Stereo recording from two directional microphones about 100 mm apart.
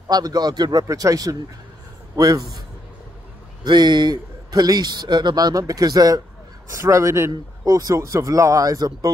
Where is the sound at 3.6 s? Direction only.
45° right (ahead or behind).